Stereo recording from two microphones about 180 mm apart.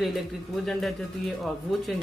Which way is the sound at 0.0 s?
Centre (ahead or behind).